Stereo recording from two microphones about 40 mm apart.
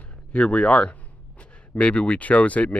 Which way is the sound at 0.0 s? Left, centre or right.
Left.